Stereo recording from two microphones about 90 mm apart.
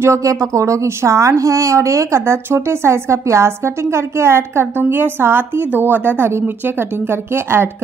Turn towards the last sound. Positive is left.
turn(degrees=-25)  # may be behind; listen again after turning